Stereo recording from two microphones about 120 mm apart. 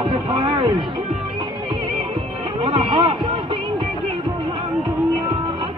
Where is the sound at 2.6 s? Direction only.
45° right (ahead or behind).